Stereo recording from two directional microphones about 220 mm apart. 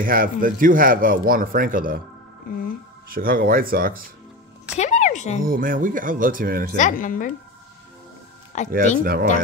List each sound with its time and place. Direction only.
0.0 s speech: 40° right (ahead or behind)
3.1 s speech: 40° right (ahead or behind)
4.7 s music: 35° left (ahead or behind)
5.4 s speech: 40° right (ahead or behind)
6.8 s speech: 40° left (ahead or behind)
8.5 s speech: 30° left (ahead or behind)
9.0 s speech: 45° right (ahead or behind)